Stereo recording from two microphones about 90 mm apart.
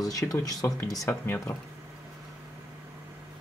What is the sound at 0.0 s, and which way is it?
Speech, 40° left (ahead or behind).